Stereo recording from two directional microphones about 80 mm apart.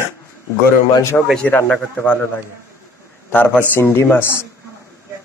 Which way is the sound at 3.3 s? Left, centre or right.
Left.